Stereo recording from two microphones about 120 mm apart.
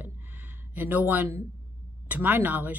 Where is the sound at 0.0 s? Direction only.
15° right (ahead or behind).